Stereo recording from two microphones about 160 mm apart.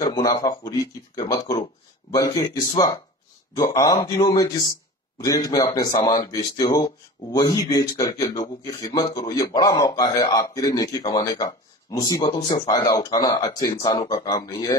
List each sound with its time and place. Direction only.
0.0 s speech: 25° left (ahead or behind)